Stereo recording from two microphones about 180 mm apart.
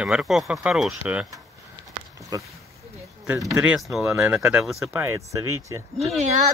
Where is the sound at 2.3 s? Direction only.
20° right (ahead or behind).